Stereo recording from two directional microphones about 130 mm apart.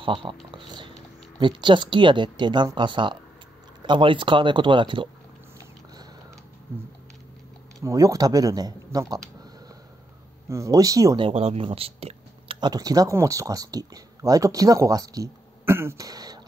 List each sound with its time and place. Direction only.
0.0 s speech: 40° right (ahead or behind)
0.6 s a sound: 35° right (ahead or behind)
1.4 s speech: 40° right (ahead or behind)
7.8 s speech: 25° right (ahead or behind)
10.5 s speech: 25° right (ahead or behind)
11.1 s speech: 45° right (ahead or behind)
12.5 s speech: 30° right (ahead or behind)